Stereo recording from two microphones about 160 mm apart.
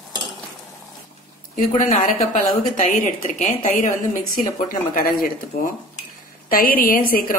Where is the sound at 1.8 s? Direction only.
55° left (ahead or behind).